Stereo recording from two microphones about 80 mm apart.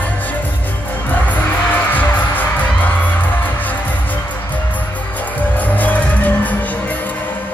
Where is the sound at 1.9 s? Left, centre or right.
Left.